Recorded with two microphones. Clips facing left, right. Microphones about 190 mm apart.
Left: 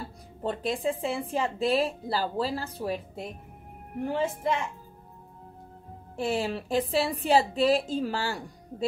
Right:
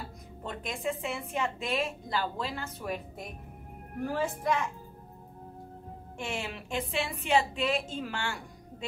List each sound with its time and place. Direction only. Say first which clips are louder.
0.4 s a woman's voice: left 8 dB; 35° left (ahead or behind)
6.1 s speech: left 9 dB; 35° left (ahead or behind)